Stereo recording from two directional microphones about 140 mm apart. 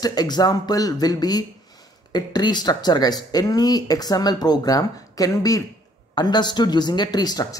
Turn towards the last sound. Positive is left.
turn(degrees=30)  # may be behind; listen again after turning